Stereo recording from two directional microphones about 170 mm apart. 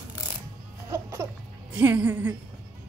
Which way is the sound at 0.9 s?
15° right (ahead or behind).